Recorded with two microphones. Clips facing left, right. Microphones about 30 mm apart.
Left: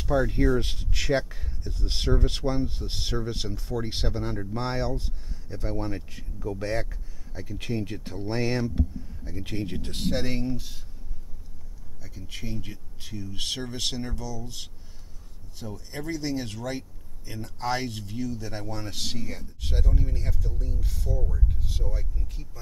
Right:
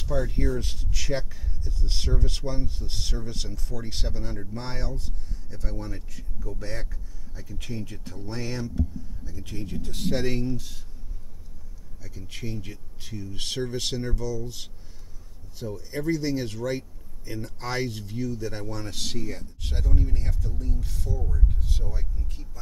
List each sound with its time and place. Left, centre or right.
0.0 s speech: centre
0.6 s speech: left
4.6 s speech: left
9.2 s speech: left
10.0 s speech: centre
12.2 s speech: centre
15.6 s speech: centre
21.3 s speech: centre